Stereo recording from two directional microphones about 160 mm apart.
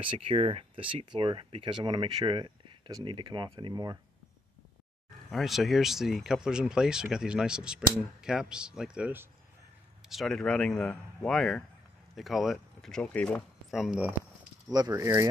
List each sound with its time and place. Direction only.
0.0 s speech: 35° right (ahead or behind)
5.3 s speech: centre (ahead or behind)
10.0 s speech: centre (ahead or behind)
13.7 s speech: 5° right (ahead or behind)
14.7 s speech: 20° right (ahead or behind)